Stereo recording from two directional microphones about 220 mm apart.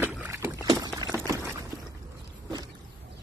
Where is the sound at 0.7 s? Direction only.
15° right (ahead or behind).